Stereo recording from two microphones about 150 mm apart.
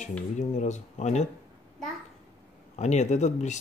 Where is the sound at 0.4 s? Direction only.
50° left (ahead or behind).